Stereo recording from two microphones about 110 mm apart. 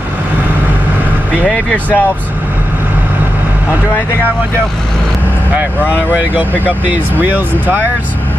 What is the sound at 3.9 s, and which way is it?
Speech, 20° left (ahead or behind).